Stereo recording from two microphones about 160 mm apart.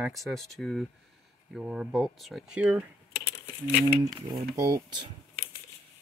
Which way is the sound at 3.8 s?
25° right (ahead or behind).